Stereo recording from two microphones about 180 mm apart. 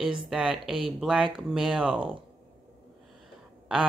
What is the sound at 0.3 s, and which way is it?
Speech, 5° right (ahead or behind).